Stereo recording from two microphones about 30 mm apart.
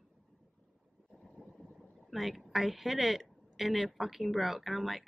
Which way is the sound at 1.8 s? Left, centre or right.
Centre.